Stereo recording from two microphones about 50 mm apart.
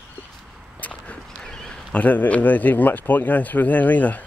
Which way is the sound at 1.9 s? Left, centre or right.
Left.